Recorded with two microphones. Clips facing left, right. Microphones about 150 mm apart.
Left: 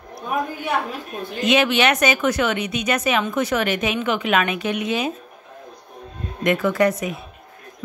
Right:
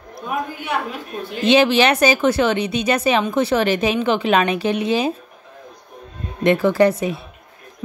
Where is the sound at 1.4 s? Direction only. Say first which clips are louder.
Right 4 dB; 30° right (ahead or behind).